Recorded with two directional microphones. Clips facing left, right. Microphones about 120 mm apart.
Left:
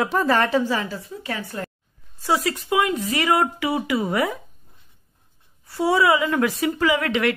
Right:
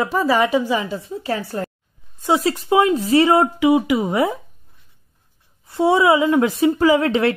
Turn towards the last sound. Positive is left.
turn(degrees=-30)  # may be behind; listen again after turning